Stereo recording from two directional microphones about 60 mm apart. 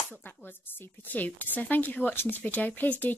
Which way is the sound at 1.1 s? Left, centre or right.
Left.